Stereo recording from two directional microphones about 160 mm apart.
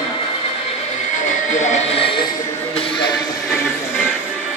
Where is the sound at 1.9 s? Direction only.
35° left (ahead or behind).